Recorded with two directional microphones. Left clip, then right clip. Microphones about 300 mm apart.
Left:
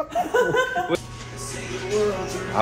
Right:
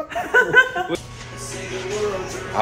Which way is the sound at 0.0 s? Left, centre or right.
Centre.